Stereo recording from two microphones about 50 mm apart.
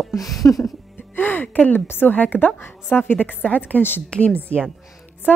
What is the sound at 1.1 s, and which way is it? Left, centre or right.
Speech, left.